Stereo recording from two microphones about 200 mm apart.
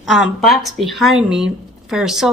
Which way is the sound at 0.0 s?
Centre (ahead or behind).